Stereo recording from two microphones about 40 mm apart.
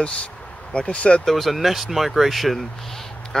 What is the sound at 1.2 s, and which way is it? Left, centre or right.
Speech, centre.